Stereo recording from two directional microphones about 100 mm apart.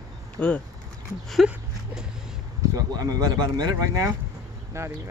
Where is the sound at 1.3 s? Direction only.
5° right (ahead or behind).